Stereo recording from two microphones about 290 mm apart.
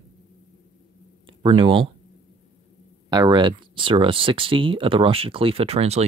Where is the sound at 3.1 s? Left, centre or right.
Centre.